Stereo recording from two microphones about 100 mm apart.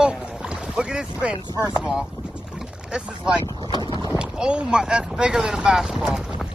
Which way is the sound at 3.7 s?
50° left (ahead or behind).